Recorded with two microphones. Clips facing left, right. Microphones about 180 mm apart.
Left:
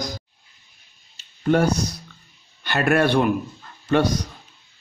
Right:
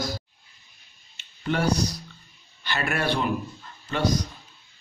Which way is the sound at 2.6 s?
55° left (ahead or behind).